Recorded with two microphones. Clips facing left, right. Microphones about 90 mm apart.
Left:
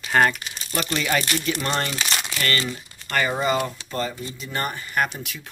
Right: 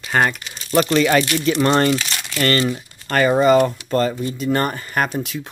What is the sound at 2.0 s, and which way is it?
Speech, 20° left (ahead or behind).